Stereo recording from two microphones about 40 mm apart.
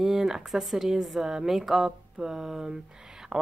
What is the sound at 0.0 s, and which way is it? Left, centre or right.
A woman's voice, centre.